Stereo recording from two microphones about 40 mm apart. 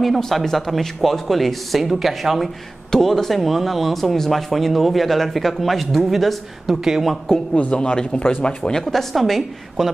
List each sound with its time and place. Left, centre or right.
0.2 s speech: centre
7.7 s speech: left
8.7 s speech: centre
9.1 s speech: centre